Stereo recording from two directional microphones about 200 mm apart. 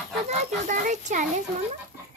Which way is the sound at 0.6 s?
40° right (ahead or behind).